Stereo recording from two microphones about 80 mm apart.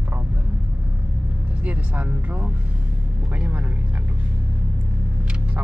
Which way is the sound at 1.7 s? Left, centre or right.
Centre.